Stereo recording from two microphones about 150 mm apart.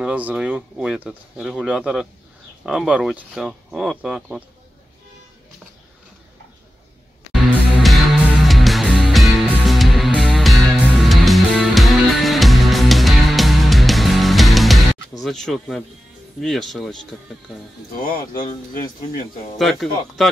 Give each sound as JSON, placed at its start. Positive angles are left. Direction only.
{"t": 0.0, "sound": "speech", "side_deg": -10}
{"t": 7.8, "sound": "music", "side_deg": 0}
{"t": 15.2, "sound": "speech", "side_deg": 0}
{"t": 18.0, "sound": "speech", "side_deg": 70}
{"t": 19.6, "sound": "speech", "side_deg": 0}